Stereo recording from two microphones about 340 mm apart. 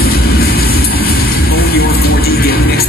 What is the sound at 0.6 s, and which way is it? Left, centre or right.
Vehicle, left.